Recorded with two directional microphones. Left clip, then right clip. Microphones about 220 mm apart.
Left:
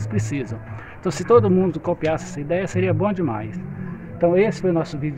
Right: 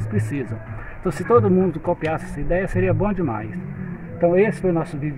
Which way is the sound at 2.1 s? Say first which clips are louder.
Even; 15° left (ahead or behind).